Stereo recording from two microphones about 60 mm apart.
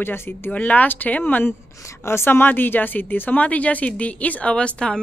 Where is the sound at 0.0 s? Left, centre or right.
Left.